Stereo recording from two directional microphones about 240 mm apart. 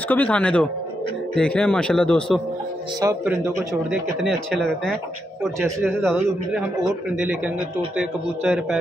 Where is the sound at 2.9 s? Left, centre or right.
Centre.